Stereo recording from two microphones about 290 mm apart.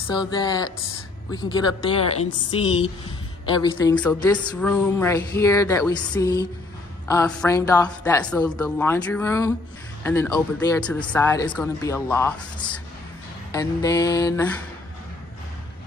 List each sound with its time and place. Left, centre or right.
0.1 s speech: centre
3.9 s a woman's voice: centre